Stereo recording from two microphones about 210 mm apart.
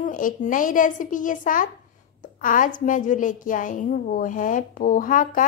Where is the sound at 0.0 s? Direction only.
40° left (ahead or behind).